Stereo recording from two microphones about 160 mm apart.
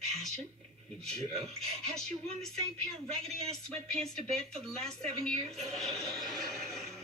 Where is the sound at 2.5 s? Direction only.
40° right (ahead or behind).